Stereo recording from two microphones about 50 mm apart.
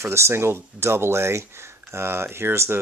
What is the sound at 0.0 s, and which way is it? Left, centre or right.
Speech, right.